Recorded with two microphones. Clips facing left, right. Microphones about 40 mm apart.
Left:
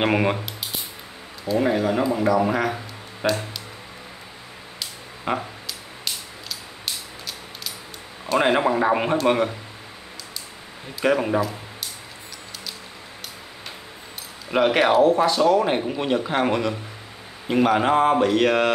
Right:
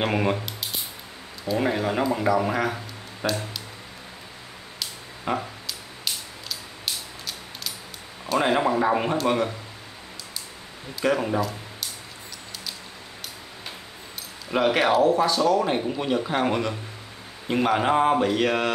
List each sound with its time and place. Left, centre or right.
0.0 s speech: centre
1.4 s speech: centre
3.2 s speech: left
4.7 s a sound: centre
5.7 s music: centre
8.4 s speech: centre
11.0 s speech: centre
14.5 s speech: centre